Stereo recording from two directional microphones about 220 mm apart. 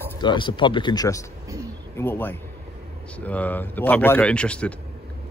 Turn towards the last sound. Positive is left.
turn(degrees=5)  # may be behind; listen again after turning